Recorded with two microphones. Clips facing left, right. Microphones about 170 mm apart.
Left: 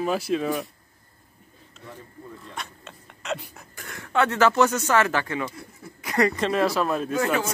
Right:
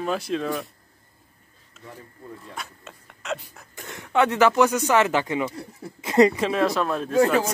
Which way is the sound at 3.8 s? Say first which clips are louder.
Right 2 dB; 20° right (ahead or behind).